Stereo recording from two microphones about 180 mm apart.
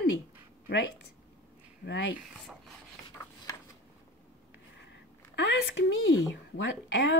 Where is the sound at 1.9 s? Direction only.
85° left.